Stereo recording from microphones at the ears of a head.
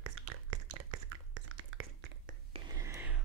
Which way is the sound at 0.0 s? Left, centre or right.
Right.